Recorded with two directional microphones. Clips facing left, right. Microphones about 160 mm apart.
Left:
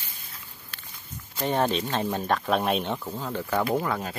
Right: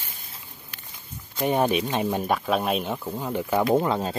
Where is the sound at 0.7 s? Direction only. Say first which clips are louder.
Even; 15° right (ahead or behind).